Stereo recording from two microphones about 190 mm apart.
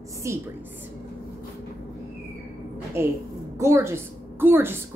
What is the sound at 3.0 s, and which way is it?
A woman's voice, 15° right (ahead or behind).